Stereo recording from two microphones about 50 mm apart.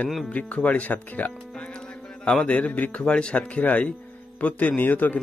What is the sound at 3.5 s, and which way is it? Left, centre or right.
Speech, left.